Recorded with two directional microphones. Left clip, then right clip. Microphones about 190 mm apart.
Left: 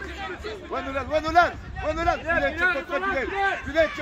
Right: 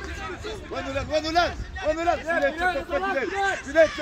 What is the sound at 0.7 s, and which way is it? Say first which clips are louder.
Speech: left 1 dB; 35° left (ahead or behind).